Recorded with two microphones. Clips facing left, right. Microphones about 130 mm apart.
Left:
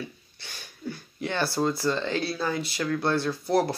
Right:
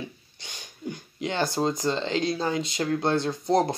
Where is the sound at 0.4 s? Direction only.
15° right (ahead or behind).